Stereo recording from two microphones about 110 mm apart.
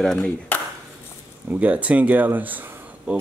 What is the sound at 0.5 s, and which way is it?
Ping, 20° left (ahead or behind).